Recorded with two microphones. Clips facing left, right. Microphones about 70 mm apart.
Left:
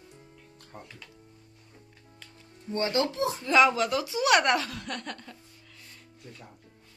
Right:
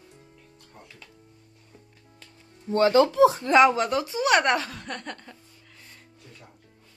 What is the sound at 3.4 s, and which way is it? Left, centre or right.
Speech, right.